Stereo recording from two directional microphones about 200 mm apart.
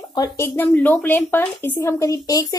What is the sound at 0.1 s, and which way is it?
Speech, 15° left (ahead or behind).